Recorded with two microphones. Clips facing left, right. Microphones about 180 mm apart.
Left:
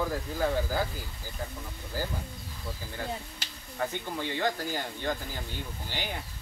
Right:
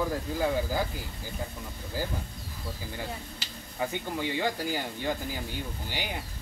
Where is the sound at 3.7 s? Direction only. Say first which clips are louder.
Right 1 dB; 10° right (ahead or behind).